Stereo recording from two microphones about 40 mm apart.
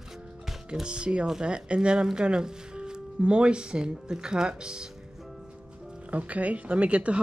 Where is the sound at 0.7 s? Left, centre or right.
Right.